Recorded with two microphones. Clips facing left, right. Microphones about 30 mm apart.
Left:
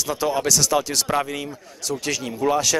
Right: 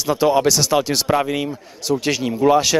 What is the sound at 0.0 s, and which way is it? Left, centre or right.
Speech, centre.